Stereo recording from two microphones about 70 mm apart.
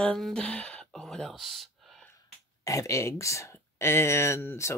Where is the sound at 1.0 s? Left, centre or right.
Centre.